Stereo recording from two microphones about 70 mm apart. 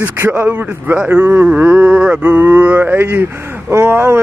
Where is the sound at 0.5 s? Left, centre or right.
Right.